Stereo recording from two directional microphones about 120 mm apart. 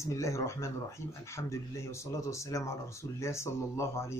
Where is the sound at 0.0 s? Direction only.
25° left (ahead or behind).